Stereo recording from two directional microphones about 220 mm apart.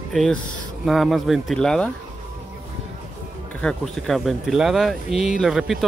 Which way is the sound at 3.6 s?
Centre (ahead or behind).